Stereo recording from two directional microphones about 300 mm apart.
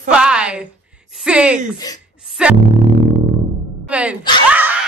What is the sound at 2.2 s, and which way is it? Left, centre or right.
Music, centre.